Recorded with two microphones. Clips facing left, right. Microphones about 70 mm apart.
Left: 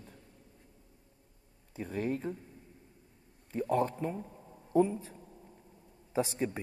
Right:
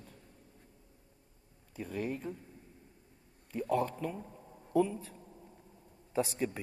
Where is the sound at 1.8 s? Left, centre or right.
Left.